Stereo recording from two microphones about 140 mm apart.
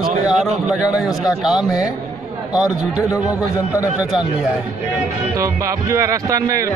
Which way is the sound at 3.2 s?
25° left (ahead or behind).